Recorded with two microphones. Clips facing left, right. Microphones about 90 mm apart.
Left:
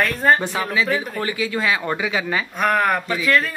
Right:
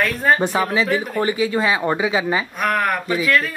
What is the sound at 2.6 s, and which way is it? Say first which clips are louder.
Speech: left 3 dB; centre (ahead or behind).